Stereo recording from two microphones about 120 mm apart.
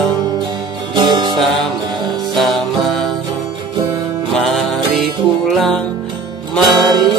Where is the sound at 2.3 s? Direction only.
Centre (ahead or behind).